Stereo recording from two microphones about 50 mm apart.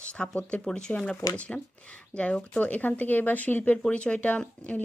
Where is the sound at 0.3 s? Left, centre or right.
Left.